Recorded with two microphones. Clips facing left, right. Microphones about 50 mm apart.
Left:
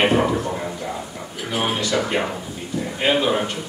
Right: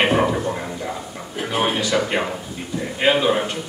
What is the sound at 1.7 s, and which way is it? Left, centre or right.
A man's voice, centre.